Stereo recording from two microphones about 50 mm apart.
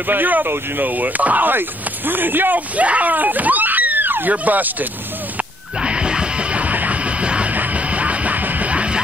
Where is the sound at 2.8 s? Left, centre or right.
Right.